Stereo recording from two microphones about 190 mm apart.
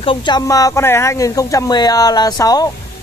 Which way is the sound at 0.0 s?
25° left (ahead or behind).